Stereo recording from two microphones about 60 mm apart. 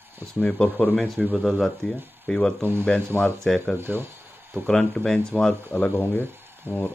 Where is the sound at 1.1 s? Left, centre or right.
Right.